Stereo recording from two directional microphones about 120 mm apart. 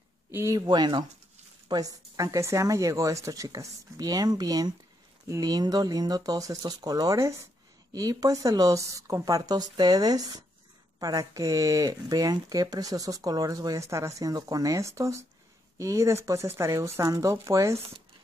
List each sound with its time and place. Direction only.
0.3 s speech: 25° right (ahead or behind)
0.7 s speech: 40° right (ahead or behind)